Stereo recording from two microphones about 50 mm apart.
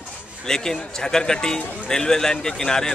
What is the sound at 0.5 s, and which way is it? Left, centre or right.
A man's voice, centre.